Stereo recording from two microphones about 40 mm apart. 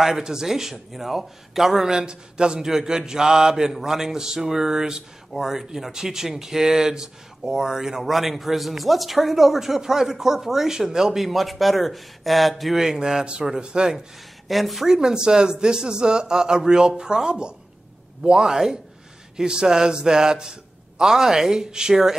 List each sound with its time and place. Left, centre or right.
0.0 s a man's voice: centre
8.0 s speech: centre
11.1 s speech: centre
12.7 s speech: centre
14.5 s speech: centre
14.9 s speech: centre
18.5 s a man's voice: centre
19.3 s a man's voice: right